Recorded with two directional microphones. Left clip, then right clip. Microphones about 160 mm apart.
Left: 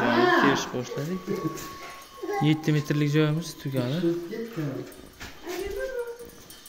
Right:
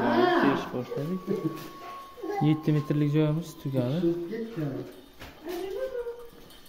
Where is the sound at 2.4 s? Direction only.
10° right (ahead or behind).